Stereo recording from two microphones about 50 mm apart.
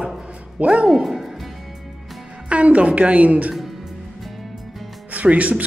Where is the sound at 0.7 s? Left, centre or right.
Centre.